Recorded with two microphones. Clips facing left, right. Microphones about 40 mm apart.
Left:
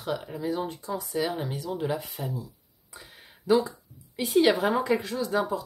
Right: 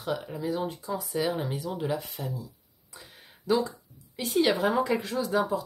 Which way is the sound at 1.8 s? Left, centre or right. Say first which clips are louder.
Left 1 dB; centre.